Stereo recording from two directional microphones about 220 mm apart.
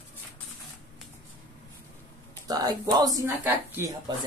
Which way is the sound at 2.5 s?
15° right (ahead or behind).